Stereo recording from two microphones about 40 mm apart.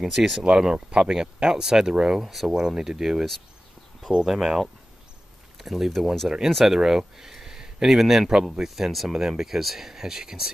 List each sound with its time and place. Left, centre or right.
0.0 s speech: centre
2.2 s speech: centre